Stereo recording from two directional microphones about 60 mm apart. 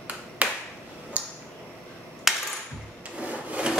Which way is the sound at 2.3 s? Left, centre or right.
Centre.